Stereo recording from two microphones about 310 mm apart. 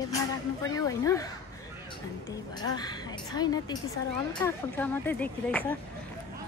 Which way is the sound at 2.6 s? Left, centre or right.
Centre.